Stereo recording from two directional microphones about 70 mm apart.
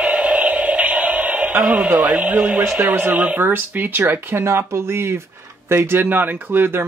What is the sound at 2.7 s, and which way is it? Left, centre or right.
Speech, right.